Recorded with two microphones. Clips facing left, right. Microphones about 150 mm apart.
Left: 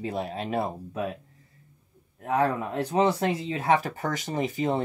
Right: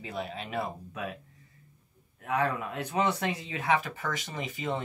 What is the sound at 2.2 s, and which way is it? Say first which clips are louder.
Speech: left 4 dB; 35° left (ahead or behind).